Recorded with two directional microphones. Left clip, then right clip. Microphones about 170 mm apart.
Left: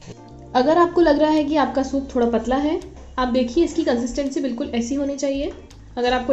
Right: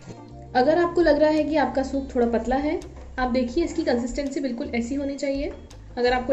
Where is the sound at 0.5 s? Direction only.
45° left (ahead or behind).